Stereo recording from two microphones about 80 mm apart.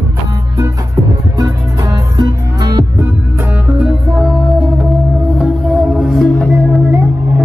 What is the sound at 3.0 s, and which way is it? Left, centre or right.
Music, right.